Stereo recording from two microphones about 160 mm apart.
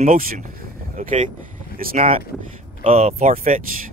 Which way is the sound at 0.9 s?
55° right (ahead or behind).